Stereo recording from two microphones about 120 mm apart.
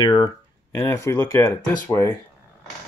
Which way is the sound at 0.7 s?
25° left (ahead or behind).